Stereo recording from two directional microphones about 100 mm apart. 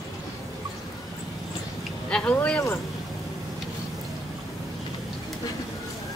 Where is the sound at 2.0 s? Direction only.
10° left (ahead or behind).